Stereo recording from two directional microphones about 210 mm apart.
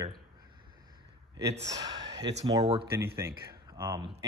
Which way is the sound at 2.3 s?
25° right (ahead or behind).